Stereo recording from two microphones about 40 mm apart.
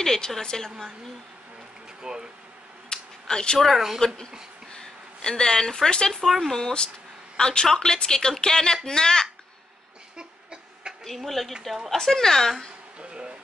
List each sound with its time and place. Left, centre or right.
0.0 s a woman's voice: centre
2.0 s speech: centre
2.9 s a sound: centre
3.5 s speech: centre
4.7 s speech: centre
6.2 s a woman's voice: centre
10.1 s a sound: right
11.1 s speech: centre
12.0 s a woman's voice: centre